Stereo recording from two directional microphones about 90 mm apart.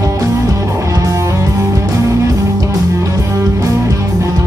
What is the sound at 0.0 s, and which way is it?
Music, 40° right (ahead or behind).